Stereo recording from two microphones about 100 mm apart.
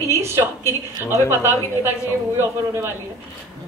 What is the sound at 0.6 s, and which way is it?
Speech, 30° left (ahead or behind).